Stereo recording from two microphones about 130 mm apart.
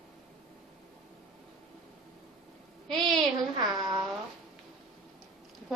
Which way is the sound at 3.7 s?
30° right (ahead or behind).